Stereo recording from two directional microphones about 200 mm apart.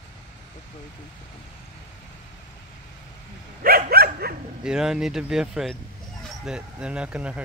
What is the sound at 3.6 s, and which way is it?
Dog, 50° right (ahead or behind).